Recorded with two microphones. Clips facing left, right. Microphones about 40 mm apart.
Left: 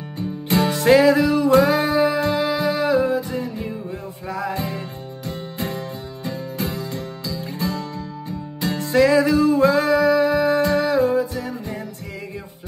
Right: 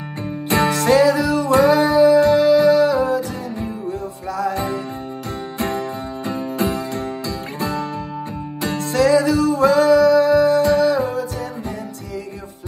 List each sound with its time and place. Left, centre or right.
0.2 s music: right
0.7 s music: centre
0.9 s music: left
1.7 s music: left
2.3 s music: centre
6.2 s music: right
9.1 s music: left
10.6 s music: left